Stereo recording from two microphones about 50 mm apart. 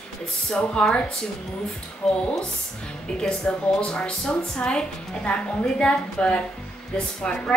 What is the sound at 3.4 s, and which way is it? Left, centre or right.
A woman's voice, left.